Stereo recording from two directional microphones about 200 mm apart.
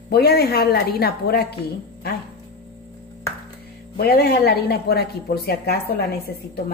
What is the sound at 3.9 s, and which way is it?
A woman's voice, 50° left (ahead or behind).